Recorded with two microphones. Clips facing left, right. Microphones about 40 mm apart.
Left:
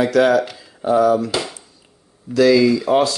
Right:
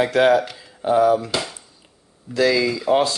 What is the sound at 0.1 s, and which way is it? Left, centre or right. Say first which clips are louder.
Speech: left 1 dB; right.